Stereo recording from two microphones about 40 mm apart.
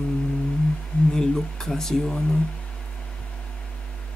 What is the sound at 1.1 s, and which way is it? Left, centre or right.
Speech, centre.